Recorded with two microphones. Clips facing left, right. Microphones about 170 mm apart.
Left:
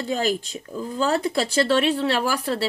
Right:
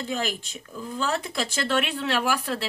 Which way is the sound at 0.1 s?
35° left (ahead or behind).